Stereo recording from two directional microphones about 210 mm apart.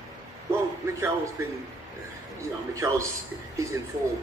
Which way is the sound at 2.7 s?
15° right (ahead or behind).